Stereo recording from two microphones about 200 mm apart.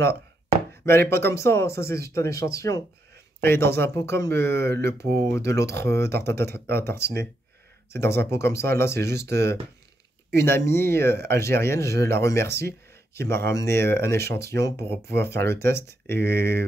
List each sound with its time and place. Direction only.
0.8 s speech: 10° left (ahead or behind)
16.2 s speech: 55° right (ahead or behind)